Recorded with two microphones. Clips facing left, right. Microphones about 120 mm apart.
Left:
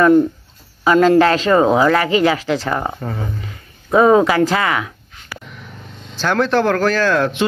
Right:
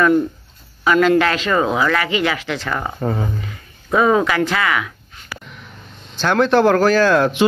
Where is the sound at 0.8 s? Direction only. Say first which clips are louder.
Left 3 dB; 30° left (ahead or behind).